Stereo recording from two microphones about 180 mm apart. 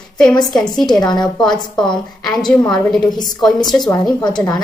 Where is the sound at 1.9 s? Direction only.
25° left (ahead or behind).